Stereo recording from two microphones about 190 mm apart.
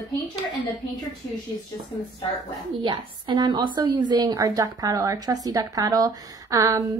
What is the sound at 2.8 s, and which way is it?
A woman's voice, 25° right (ahead or behind).